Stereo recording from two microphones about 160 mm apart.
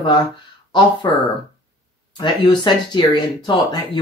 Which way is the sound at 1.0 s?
25° left (ahead or behind).